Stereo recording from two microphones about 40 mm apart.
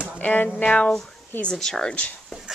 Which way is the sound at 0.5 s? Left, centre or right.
Left.